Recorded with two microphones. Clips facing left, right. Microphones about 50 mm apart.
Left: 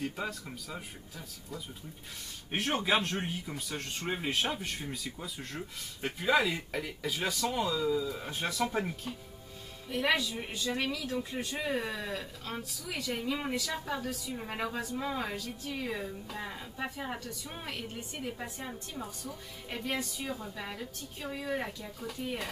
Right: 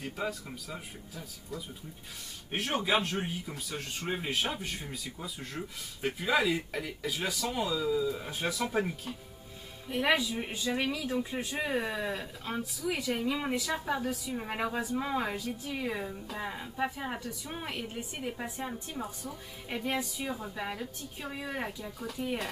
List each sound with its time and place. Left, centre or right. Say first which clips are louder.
0.0 s speech: right 1 dB; centre
9.8 s speech: right 2 dB; centre